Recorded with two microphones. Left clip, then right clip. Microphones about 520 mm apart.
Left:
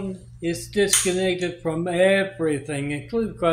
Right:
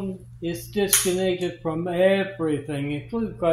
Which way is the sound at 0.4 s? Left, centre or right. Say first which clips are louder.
Left 3 dB; right.